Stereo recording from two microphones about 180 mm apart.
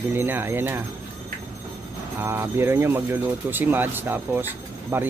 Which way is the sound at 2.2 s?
15° right (ahead or behind).